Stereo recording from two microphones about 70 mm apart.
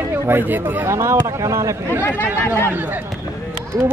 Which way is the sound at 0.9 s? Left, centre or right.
Right.